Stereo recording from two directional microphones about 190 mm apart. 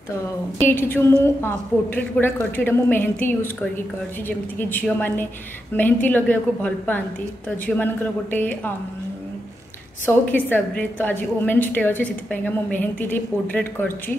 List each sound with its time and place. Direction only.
0.1 s a woman's voice: 10° left (ahead or behind)
4.6 s a woman's voice: 10° left (ahead or behind)
10.0 s a woman's voice: 10° left (ahead or behind)